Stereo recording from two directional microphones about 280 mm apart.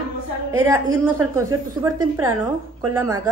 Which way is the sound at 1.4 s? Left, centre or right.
Right.